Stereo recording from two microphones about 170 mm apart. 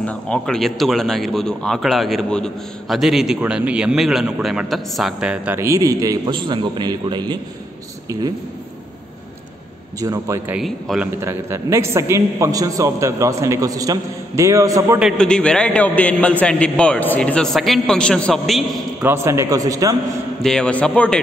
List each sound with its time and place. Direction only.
0.0 s a man's voice: 5° left (ahead or behind); by 8.2 s 20° right (ahead or behind)
9.9 s a man's voice: 20° right (ahead or behind)
10.6 s speech: centre (ahead or behind)
11.1 s a man's voice: 15° right (ahead or behind)
15.0 s speech: centre (ahead or behind)
19.0 s a man's voice: 15° right (ahead or behind)
20.4 s a man's voice: 5° left (ahead or behind)